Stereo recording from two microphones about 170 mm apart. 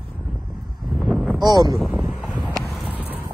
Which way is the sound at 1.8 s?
5° right (ahead or behind).